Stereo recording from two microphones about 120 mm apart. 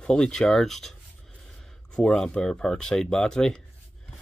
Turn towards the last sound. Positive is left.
turn(degrees=5)  # may be behind; listen again after turning